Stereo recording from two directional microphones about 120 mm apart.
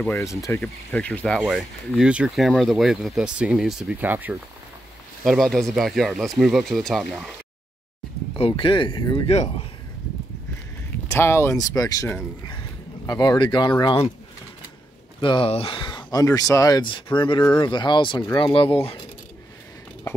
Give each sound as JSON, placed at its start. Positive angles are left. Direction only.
{"t": 0.1, "sound": "speech", "side_deg": 25}
{"t": 0.6, "sound": "speech", "side_deg": 10}
{"t": 5.2, "sound": "speech", "side_deg": 0}
{"t": 8.4, "sound": "speech", "side_deg": 45}
{"t": 9.3, "sound": "speech", "side_deg": 65}
{"t": 11.1, "sound": "speech", "side_deg": 20}
{"t": 15.1, "sound": "speech", "side_deg": 45}